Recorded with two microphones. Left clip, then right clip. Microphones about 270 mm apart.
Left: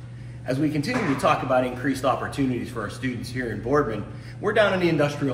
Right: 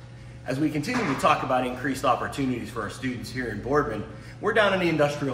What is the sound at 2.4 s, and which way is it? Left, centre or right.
Speech, right.